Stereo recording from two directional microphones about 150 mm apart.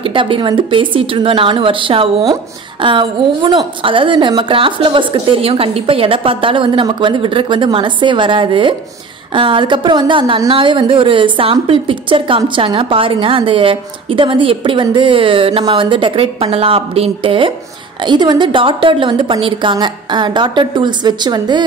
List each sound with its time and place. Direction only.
0.0 s speech: 35° right (ahead or behind)